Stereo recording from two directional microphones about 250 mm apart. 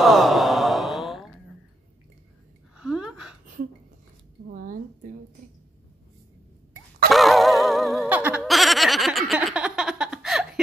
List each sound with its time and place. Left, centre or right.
0.0 s sigh: centre
2.8 s gasp: centre
4.5 s a sound: right
7.1 s laughter: centre